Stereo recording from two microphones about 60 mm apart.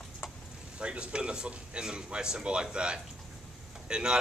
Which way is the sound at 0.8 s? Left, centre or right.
Centre.